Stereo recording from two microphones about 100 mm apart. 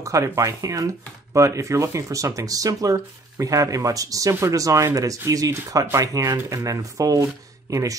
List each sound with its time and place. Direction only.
0.0 s speech: 35° right (ahead or behind)